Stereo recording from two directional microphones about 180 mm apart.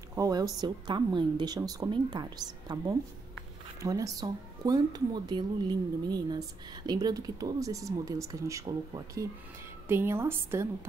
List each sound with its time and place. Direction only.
0.1 s a woman's voice: 20° right (ahead or behind)